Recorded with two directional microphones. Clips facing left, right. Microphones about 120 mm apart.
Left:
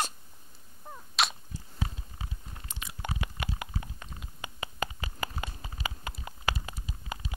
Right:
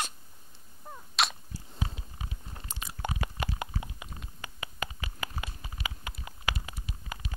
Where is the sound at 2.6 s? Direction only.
35° right (ahead or behind).